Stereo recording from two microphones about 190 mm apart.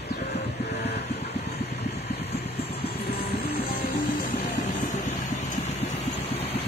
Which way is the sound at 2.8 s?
55° left (ahead or behind).